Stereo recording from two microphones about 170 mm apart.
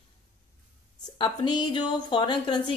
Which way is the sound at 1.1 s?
25° left (ahead or behind).